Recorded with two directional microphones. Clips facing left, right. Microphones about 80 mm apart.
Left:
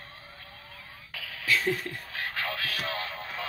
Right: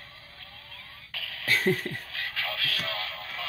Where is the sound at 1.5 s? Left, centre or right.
Right.